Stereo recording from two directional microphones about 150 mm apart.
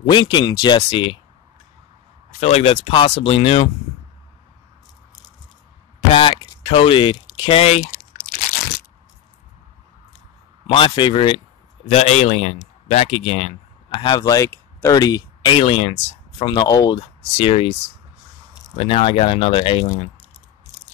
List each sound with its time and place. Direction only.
0.0 s speech: 30° left (ahead or behind)
2.4 s speech: 40° left (ahead or behind)
5.9 s speech: 35° left (ahead or behind)
10.7 s speech: 35° left (ahead or behind)
11.9 s speech: 45° left (ahead or behind)
18.8 s speech: 40° left (ahead or behind)